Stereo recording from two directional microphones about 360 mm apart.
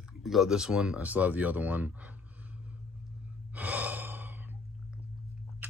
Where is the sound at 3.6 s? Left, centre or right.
Centre.